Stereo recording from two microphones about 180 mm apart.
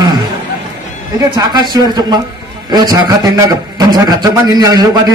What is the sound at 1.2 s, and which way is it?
A man's voice, 20° right (ahead or behind).